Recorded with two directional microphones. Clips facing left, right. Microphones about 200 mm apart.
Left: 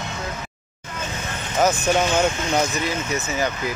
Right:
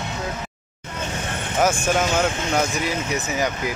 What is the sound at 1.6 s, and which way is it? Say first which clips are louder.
Speech: left 1 dB; 10° right (ahead or behind).